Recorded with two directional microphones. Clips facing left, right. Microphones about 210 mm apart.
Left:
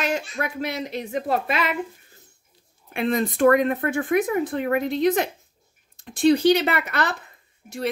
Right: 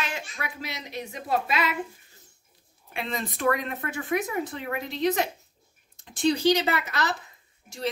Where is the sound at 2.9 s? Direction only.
50° left (ahead or behind).